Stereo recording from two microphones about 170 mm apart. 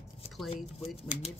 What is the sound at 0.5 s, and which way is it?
Speech, 35° left (ahead or behind).